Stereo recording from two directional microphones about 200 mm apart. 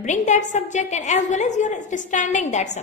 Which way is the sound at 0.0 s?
35° left (ahead or behind).